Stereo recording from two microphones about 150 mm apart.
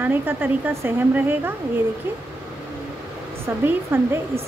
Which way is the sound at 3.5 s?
15° right (ahead or behind).